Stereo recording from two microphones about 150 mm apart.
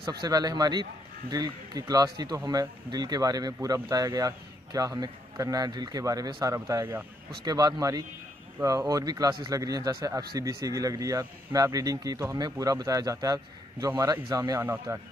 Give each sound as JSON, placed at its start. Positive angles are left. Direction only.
{"t": 0.2, "sound": "speech", "side_deg": -25}